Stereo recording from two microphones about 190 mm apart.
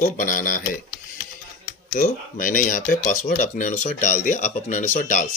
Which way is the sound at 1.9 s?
45° left (ahead or behind).